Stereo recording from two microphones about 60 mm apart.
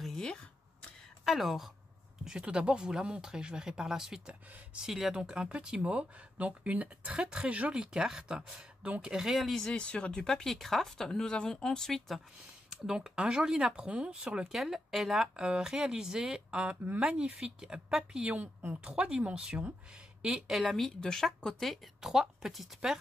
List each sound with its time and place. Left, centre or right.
0.0 s a sound: centre
1.2 s speech: centre
2.2 s speech: centre
7.7 s speech: centre
9.8 s speech: centre
12.6 s speech: centre
14.5 s speech: centre; by 17.0 s right
17.0 s speech: centre
22.0 s speech: centre